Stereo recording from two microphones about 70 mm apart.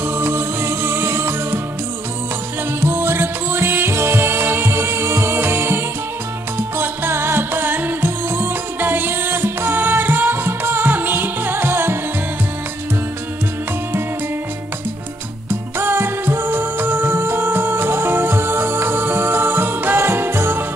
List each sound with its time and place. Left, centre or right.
0.2 s music: right
2.8 s music: right
6.8 s music: right
15.8 s music: right